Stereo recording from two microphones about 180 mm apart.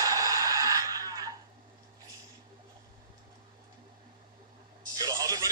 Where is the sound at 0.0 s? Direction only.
20° right (ahead or behind).